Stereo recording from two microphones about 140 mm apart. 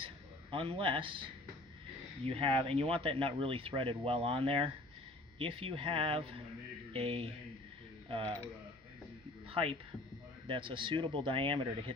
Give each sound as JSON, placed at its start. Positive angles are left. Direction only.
{"t": 0.0, "sound": "a sound", "side_deg": -40}
{"t": 2.2, "sound": "speech", "side_deg": -40}
{"t": 9.5, "sound": "speech", "side_deg": -40}